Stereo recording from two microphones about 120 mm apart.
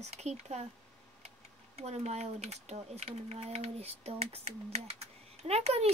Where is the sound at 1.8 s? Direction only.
65° right (ahead or behind).